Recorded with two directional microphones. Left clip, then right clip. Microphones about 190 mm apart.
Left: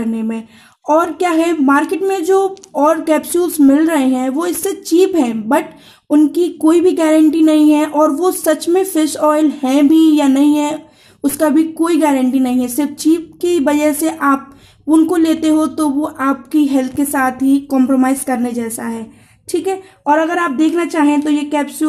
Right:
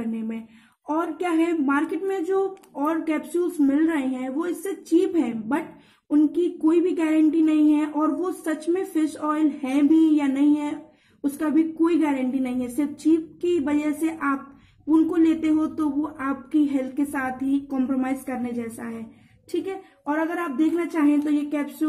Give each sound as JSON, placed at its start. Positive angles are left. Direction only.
{"t": 0.8, "sound": "speech", "side_deg": 50}